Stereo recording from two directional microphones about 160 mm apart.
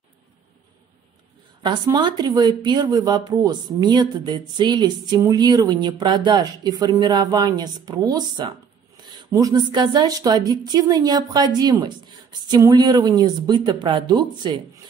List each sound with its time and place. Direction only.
1.6 s speech: 25° right (ahead or behind)